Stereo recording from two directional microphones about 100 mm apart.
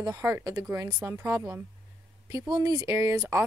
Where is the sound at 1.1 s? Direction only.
20° right (ahead or behind).